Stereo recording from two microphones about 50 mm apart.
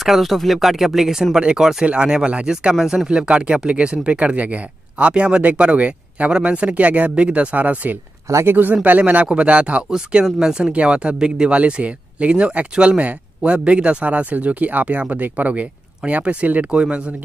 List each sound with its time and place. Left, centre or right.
0.0 s speech: centre
2.7 s speech: centre
3.1 s speech: centre
9.8 s speech: centre; by 16.6 s right